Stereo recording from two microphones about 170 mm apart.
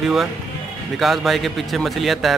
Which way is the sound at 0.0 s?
Centre (ahead or behind).